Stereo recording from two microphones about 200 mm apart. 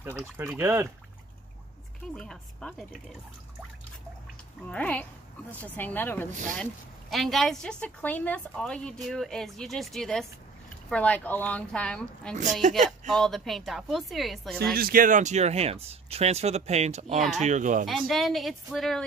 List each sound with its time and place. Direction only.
0.0 s speech: 10° right (ahead or behind)
2.1 s a woman's voice: 5° left (ahead or behind)
4.6 s a woman's voice: 5° left (ahead or behind)
14.7 s speech: 45° right (ahead or behind)
17.8 s a woman's voice: centre (ahead or behind)